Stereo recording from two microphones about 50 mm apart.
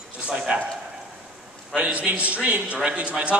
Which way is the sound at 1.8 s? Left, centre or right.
Right.